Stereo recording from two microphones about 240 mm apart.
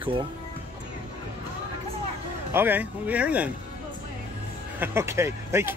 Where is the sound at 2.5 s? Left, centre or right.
Centre.